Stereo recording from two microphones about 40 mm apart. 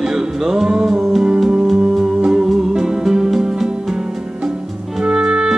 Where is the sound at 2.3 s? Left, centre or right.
Centre.